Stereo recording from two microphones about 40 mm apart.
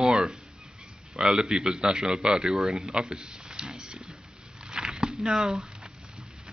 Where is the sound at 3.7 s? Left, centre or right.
Centre.